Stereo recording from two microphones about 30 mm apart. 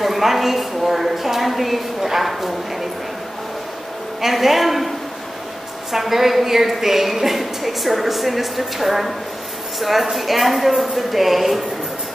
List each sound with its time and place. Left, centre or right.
0.0 s a woman's voice: centre
4.2 s a woman's voice: centre